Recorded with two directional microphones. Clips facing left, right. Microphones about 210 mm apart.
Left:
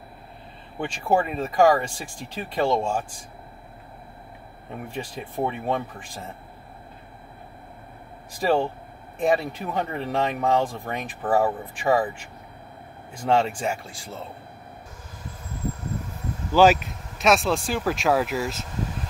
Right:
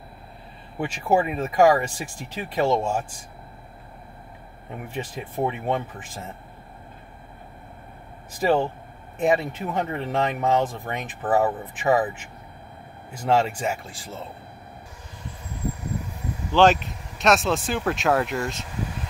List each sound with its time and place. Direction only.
0.7 s speech: 5° right (ahead or behind)
4.9 s speech: 5° right (ahead or behind)
8.4 s speech: centre (ahead or behind)
16.5 s speech: 5° left (ahead or behind)